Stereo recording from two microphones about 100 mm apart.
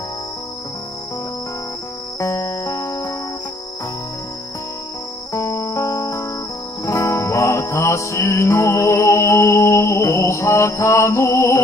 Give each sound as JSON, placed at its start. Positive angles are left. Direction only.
{"t": 2.1, "sound": "music", "side_deg": 25}
{"t": 5.3, "sound": "music", "side_deg": 25}